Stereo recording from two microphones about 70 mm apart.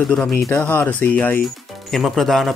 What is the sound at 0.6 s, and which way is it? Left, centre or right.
Speech, centre.